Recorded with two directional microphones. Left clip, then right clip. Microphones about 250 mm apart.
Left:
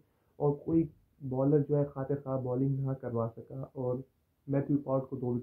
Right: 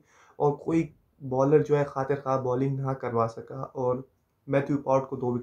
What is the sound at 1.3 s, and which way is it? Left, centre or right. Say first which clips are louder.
Speech: right 7 dB; centre.